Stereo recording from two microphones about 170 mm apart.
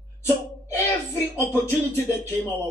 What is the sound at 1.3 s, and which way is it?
Speech, 15° left (ahead or behind).